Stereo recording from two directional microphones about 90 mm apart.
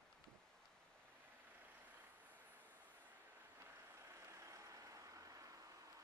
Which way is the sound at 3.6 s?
30° right (ahead or behind).